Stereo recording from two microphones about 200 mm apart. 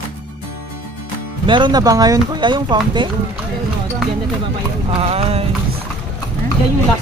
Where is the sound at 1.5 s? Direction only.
20° right (ahead or behind).